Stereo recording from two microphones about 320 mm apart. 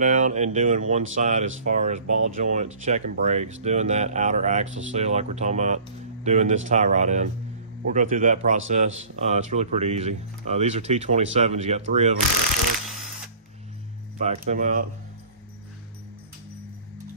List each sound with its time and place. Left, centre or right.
0.0 s speech: right
14.2 s speech: right